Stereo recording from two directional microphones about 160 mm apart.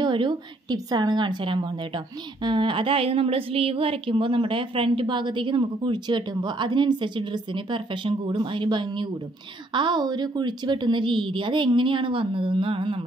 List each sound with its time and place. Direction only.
0.0 s a woman's voice: 30° right (ahead or behind)